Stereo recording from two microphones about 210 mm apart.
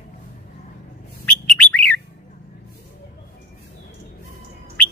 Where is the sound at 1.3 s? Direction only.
5° left (ahead or behind).